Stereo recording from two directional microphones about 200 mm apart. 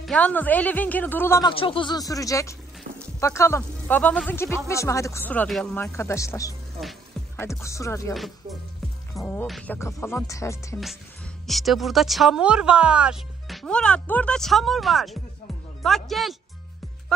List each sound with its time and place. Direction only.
0.0 s speech: 5° left (ahead or behind)
1.5 s speech: 25° left (ahead or behind)
8.1 s speech: centre (ahead or behind)
11.4 s speech: centre (ahead or behind)